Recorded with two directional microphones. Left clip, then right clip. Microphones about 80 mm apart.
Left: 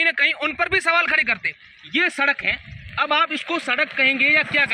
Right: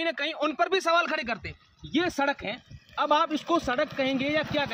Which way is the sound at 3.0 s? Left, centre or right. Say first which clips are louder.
Left 2 dB; right.